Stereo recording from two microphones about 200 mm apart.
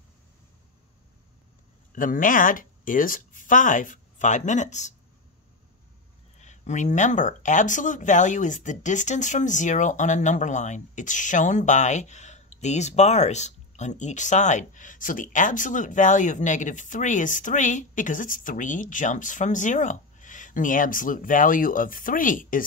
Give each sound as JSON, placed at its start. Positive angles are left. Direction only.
{"t": 1.9, "sound": "speech", "side_deg": 45}
{"t": 6.3, "sound": "speech", "side_deg": 35}